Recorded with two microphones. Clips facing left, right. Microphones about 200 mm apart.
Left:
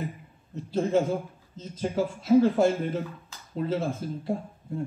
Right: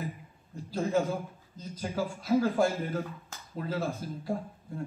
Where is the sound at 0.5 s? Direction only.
25° left (ahead or behind).